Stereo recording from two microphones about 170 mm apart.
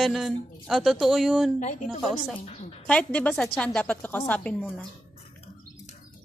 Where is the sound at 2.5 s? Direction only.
40° left (ahead or behind).